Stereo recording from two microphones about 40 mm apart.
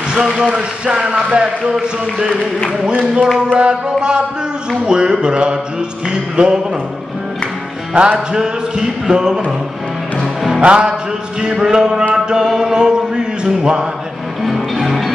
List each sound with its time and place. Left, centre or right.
0.1 s speech: centre
0.8 s music: right
7.9 s music: right; by 10.6 s centre
10.6 s music: right
12.4 s chant: centre
14.4 s music: centre